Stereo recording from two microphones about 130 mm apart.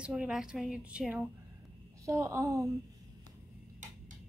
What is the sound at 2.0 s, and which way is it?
Speech, 20° right (ahead or behind).